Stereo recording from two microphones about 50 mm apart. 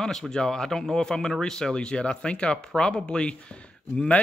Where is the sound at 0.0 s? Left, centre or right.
Centre.